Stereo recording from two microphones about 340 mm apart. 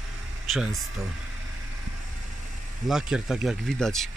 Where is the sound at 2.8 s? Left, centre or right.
Centre.